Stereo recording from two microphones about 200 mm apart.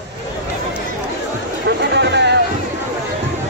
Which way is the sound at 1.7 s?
60° right (ahead or behind).